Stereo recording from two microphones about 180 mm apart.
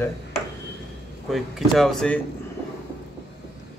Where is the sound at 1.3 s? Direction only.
Centre (ahead or behind).